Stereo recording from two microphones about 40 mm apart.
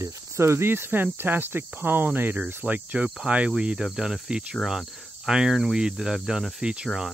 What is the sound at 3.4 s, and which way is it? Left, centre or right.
Speech, right.